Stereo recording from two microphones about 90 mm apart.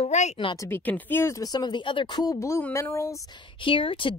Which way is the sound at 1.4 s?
50° left (ahead or behind).